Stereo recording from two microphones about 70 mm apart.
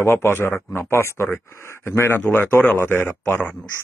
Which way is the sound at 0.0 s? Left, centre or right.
Left.